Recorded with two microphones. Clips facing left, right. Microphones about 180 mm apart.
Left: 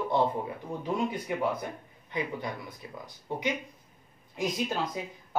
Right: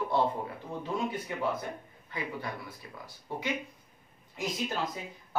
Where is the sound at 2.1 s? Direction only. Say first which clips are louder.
Left 5 dB; 20° left (ahead or behind).